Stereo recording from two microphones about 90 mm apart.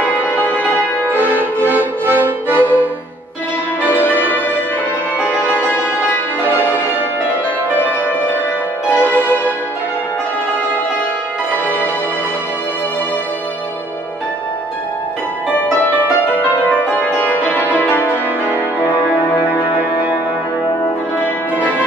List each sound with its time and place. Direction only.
0.0 s music: 20° left (ahead or behind)
1.3 s music: 20° right (ahead or behind)
3.8 s music: 20° left (ahead or behind)
5.3 s music: 15° right (ahead or behind)
5.6 s music: 20° left (ahead or behind)
6.6 s music: 20° right (ahead or behind)
7.7 s music: 20° left (ahead or behind)
16.9 s music: 20° left (ahead or behind)
21.2 s music: 20° left (ahead or behind)